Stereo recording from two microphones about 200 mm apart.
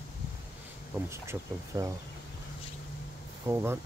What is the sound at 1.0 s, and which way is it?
Speech, 15° right (ahead or behind).